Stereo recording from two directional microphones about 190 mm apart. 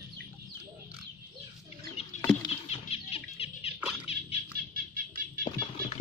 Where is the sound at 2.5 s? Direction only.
30° left (ahead or behind).